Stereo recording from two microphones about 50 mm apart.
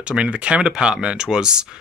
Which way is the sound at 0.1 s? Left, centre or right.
Right.